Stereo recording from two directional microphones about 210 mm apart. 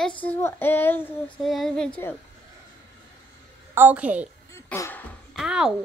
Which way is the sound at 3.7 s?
10° right (ahead or behind).